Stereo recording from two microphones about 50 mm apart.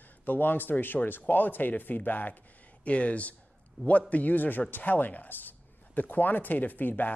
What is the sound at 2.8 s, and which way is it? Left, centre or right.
Speech, left.